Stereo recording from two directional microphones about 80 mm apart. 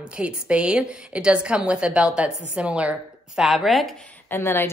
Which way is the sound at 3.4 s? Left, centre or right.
Centre.